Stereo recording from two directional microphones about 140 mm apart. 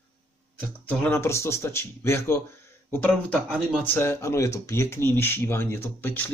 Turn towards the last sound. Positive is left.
turn(degrees=15)  # may be behind; listen again after turning